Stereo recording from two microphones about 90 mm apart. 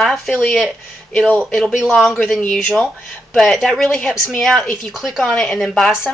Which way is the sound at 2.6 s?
15° left (ahead or behind).